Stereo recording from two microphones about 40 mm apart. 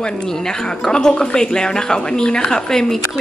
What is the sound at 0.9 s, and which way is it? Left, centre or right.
A woman's voice, centre.